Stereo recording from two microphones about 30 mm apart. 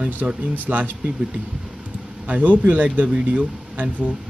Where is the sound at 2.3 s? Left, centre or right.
Right.